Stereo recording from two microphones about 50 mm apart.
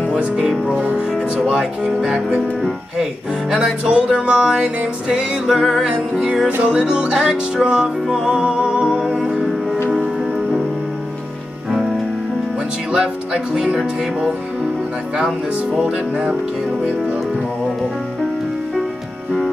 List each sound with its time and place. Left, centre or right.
0.1 s speech: centre
6.6 s music: right
12.9 s speech: centre
15.1 s speech: centre
15.8 s speech: centre